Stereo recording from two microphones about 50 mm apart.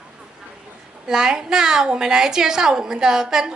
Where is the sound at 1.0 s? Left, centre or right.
Centre.